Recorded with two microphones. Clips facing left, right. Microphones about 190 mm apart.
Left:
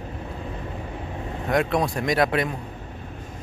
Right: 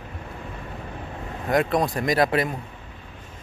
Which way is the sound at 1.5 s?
Centre (ahead or behind).